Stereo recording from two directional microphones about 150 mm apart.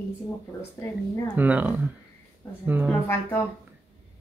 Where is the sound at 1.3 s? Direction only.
10° right (ahead or behind).